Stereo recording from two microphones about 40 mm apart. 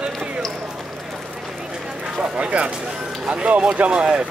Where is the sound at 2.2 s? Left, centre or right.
Right.